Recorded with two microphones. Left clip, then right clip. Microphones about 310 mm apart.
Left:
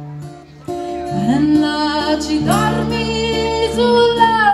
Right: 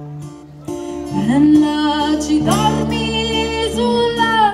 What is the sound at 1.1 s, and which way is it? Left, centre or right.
Music, right.